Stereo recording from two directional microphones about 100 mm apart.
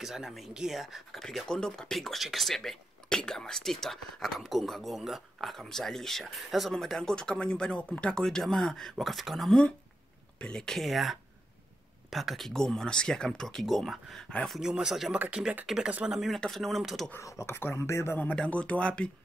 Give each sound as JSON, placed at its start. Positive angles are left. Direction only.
{"t": 0.0, "sound": "speech", "side_deg": -5}
{"t": 14.6, "sound": "speech", "side_deg": -5}
{"t": 16.3, "sound": "speech", "side_deg": 5}
{"t": 17.2, "sound": "speech", "side_deg": 30}